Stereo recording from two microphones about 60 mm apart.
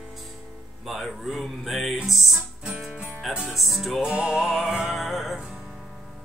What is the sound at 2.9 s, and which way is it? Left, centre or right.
Music, centre.